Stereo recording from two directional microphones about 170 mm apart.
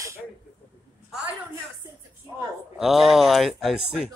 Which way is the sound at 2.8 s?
Centre (ahead or behind).